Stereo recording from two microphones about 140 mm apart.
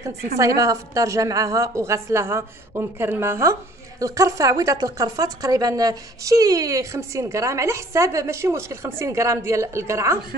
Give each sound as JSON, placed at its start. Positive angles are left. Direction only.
{"t": 0.6, "sound": "a woman's voice", "side_deg": -25}